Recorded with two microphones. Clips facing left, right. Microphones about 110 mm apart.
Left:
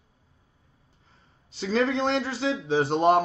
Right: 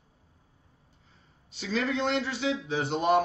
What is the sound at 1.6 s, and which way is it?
Speech, 35° left (ahead or behind).